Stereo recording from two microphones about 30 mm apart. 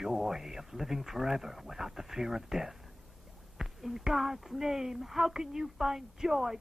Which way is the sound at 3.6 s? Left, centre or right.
Right.